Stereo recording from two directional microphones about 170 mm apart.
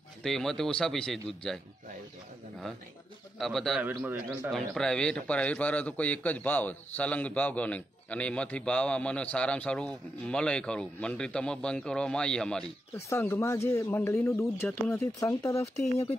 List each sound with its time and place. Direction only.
0.2 s a man's voice: centre (ahead or behind)
3.3 s a man's voice: centre (ahead or behind)
3.8 s a man's voice: 10° right (ahead or behind)
4.5 s a man's voice: 5° left (ahead or behind)
12.9 s a man's voice: 15° left (ahead or behind)
15.7 s speech: 40° left (ahead or behind)